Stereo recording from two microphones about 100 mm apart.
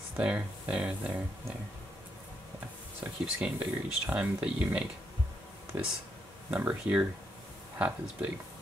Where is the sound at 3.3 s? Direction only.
15° right (ahead or behind).